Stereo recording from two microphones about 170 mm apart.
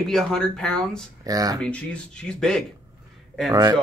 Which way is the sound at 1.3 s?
20° right (ahead or behind).